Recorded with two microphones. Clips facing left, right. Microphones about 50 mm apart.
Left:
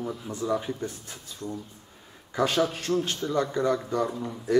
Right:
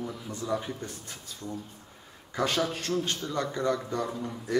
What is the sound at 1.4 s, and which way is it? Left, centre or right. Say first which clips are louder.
Speech: left 3 dB; left.